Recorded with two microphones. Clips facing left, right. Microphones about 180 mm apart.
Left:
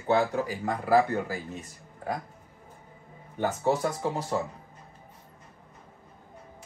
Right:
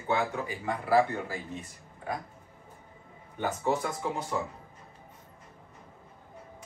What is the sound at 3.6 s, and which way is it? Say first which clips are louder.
Speech: left 3 dB; 35° left (ahead or behind).